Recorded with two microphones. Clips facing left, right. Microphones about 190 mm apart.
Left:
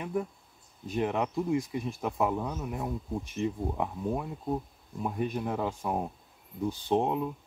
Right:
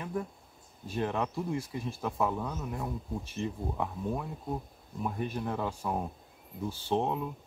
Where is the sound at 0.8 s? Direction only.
15° left (ahead or behind).